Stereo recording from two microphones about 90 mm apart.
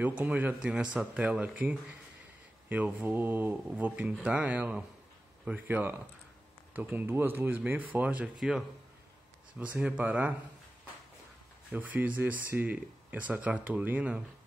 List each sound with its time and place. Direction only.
0.0 s speech: 20° right (ahead or behind)
8.4 s speech: 5° right (ahead or behind)
9.6 s speech: 15° right (ahead or behind)
11.7 s speech: 20° right (ahead or behind)